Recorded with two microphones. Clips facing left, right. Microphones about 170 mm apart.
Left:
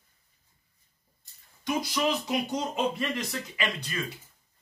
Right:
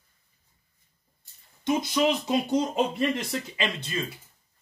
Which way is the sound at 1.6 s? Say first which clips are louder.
Right 4 dB; 25° right (ahead or behind).